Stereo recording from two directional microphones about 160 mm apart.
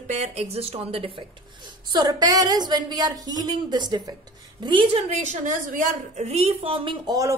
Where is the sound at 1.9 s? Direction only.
25° right (ahead or behind).